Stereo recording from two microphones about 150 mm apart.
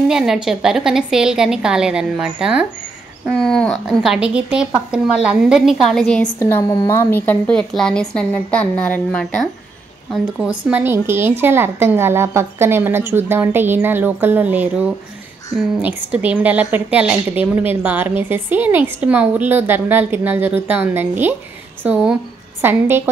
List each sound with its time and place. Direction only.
0.1 s a woman's voice: 5° right (ahead or behind)
6.4 s a woman's voice: 25° left (ahead or behind); by 9.5 s 5° left (ahead or behind)
10.4 s a woman's voice: 10° right (ahead or behind)